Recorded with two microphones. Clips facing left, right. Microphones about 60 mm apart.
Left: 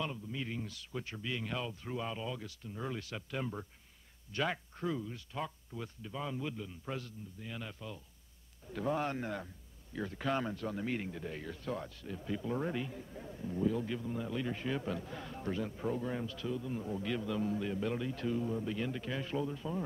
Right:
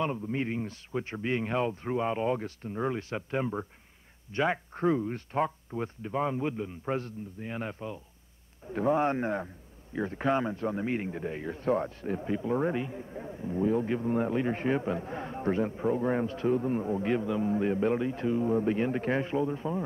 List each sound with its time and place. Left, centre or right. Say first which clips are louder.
0.0 s a man's voice: right 9 dB; right
18.5 s a man's voice: right 10 dB; right
19.2 s a man's voice: right 7 dB; right